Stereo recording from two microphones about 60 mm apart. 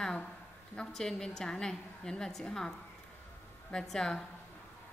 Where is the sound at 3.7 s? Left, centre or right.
Centre.